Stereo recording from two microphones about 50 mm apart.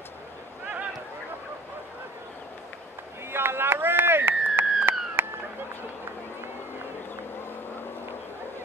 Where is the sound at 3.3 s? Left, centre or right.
Right.